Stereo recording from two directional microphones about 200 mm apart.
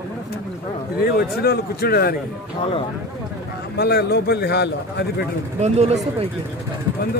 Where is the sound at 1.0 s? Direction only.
50° left (ahead or behind).